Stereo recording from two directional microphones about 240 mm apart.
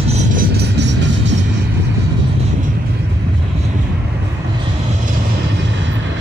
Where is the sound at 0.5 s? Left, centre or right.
Right.